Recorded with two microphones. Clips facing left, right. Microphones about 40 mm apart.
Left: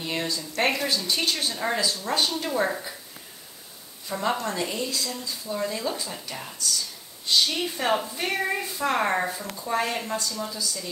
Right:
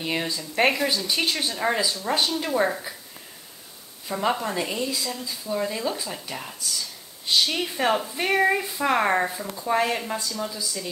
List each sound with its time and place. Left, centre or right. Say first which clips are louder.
0.0 s speech: right 2 dB; centre
4.1 s speech: right 2 dB; centre